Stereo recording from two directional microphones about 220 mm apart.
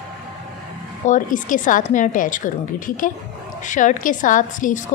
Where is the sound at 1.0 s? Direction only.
35° left (ahead or behind).